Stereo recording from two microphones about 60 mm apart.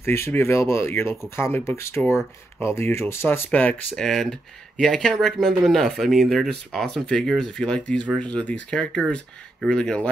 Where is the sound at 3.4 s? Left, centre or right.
Left.